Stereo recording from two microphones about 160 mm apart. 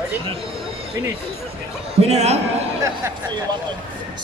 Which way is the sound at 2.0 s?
45° right (ahead or behind).